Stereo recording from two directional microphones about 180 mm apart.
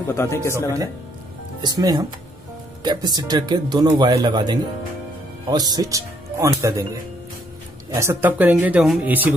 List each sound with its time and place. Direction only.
0.1 s speech: 15° left (ahead or behind)
1.6 s speech: 20° right (ahead or behind)